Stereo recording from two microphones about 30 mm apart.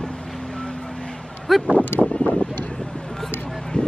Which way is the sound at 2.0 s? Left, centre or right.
Left.